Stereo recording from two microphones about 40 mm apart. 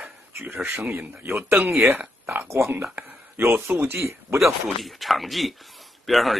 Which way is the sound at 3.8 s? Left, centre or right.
Right.